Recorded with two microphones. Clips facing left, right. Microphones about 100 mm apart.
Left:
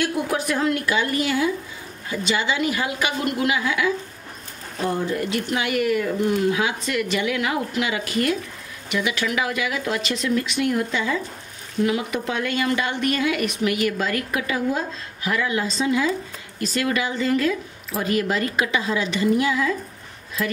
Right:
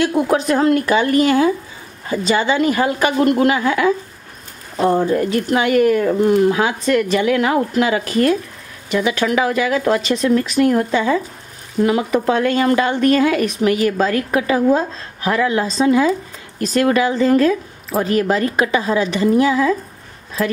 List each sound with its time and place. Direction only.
0.0 s a woman's voice: 35° right (ahead or behind)
1.0 s speech: 55° right (ahead or behind)
2.0 s a woman's voice: 40° right (ahead or behind)
5.0 s a woman's voice: 40° right (ahead or behind)